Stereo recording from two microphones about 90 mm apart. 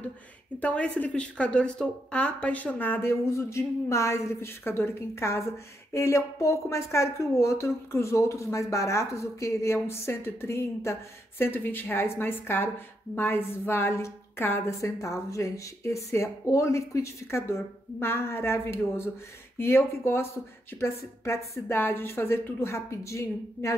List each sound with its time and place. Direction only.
0.6 s a woman's voice: 15° left (ahead or behind); by 23.7 s 30° left (ahead or behind)